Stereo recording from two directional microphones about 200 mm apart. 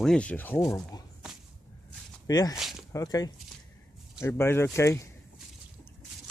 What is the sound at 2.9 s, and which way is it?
Speech, 20° left (ahead or behind).